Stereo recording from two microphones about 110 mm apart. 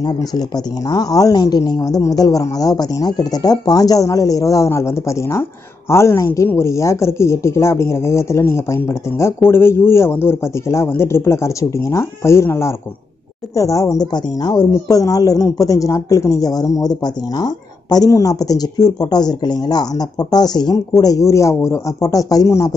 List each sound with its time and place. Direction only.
0.3 s a woman's voice: 35° left (ahead or behind)